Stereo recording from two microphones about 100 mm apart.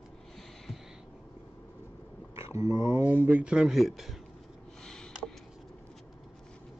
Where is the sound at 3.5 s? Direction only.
5° right (ahead or behind).